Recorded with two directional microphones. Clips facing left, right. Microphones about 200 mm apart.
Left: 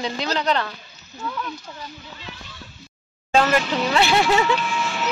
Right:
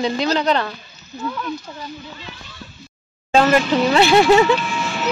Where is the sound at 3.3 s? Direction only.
25° right (ahead or behind).